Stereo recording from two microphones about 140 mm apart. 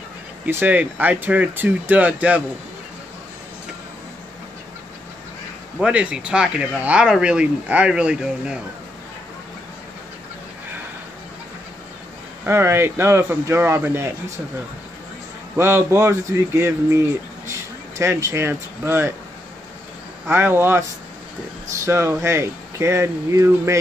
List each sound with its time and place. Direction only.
0.5 s speech: 15° right (ahead or behind)
5.8 s speech: 10° right (ahead or behind)
12.4 s speech: 15° right (ahead or behind)
15.5 s speech: 20° right (ahead or behind)
20.2 s speech: 15° right (ahead or behind)
21.8 s speech: 20° right (ahead or behind)